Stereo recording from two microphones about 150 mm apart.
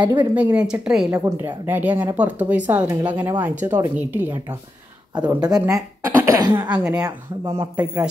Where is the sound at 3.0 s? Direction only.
15° right (ahead or behind).